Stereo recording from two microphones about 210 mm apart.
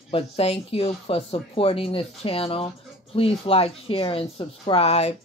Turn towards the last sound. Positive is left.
turn(degrees=30)  # may be behind; listen again after turning